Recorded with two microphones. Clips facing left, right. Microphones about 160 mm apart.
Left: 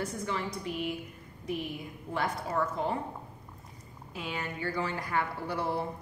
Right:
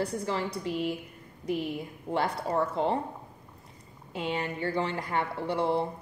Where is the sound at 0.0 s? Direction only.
35° right (ahead or behind).